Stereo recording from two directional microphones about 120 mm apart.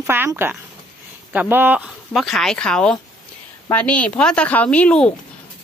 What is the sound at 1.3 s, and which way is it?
Speech, 15° right (ahead or behind).